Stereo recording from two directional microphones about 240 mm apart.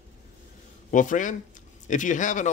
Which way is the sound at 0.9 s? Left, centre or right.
Left.